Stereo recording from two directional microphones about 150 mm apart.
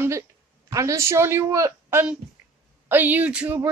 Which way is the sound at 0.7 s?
20° right (ahead or behind).